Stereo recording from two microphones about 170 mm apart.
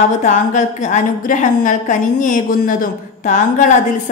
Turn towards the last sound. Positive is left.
turn(degrees=45)  # may be behind; listen again after turning